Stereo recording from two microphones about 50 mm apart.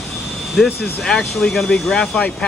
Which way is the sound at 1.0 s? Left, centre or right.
Centre.